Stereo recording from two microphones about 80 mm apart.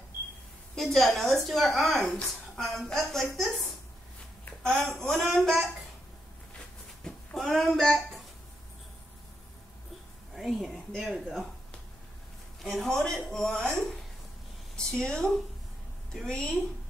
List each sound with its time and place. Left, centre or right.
0.7 s a woman's voice: centre
2.0 s a woman's voice: centre
2.6 s a woman's voice: centre
4.7 s a woman's voice: centre
7.0 s a sound: centre
7.3 s speech: centre
10.3 s a woman's voice: centre
12.6 s a woman's voice: centre